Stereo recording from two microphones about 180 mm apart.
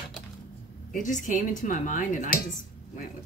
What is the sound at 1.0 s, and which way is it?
Speech, 45° left (ahead or behind).